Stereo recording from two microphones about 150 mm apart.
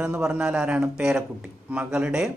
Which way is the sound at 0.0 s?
5° right (ahead or behind).